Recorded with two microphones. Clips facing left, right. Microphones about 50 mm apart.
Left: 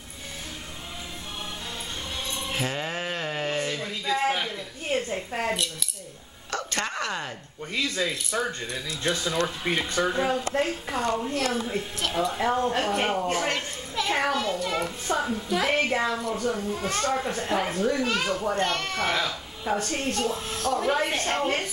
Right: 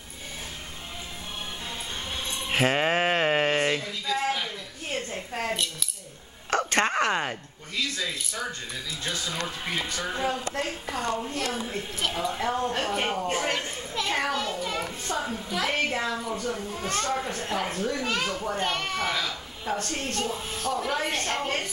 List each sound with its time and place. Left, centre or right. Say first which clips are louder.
2.5 s music: right 8 dB; right
3.8 s a sound: left 2 dB; centre
4.9 s a woman's voice: left 4 dB; centre
6.5 s a sound: right 6 dB; right
7.7 s speech: left 3 dB; left
9.7 s speech: left 4 dB; left
10.0 s a woman's voice: left 3 dB; centre
11.3 s a child's voice: left 3 dB; centre
12.4 s a child's voice: left 3 dB; centre
15.1 s a woman's voice: left 4 dB; centre
16.2 s a child's voice: left 2 dB; centre
16.4 s a child's voice: left 3 dB; centre
19.1 s a woman's voice: left 3 dB; centre
21.0 s a woman's voice: left 3 dB; centre